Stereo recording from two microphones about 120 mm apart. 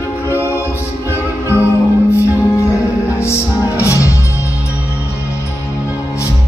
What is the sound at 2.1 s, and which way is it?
Music, 25° left (ahead or behind).